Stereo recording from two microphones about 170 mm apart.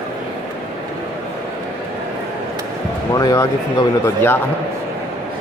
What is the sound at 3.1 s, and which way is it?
A man's voice, 20° left (ahead or behind).